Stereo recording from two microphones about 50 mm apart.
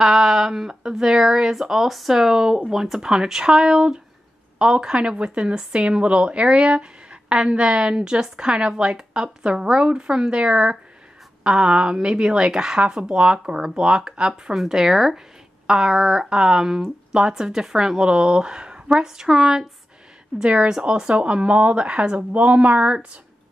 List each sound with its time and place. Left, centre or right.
0.0 s speech: centre; by 23.0 s right